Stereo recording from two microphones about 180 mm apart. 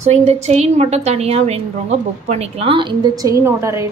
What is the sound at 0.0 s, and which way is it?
A woman's voice, 40° right (ahead or behind).